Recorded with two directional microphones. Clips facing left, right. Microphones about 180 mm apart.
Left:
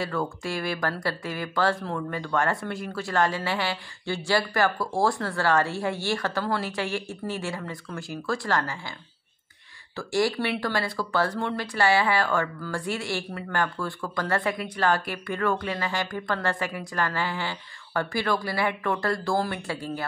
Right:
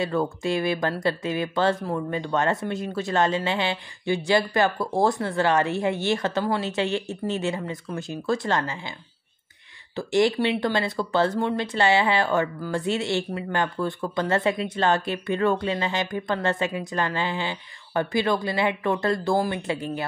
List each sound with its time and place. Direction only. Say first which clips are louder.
0.0 s speech: right 4 dB; 20° right (ahead or behind)
9.9 s speech: right 4 dB; 20° right (ahead or behind)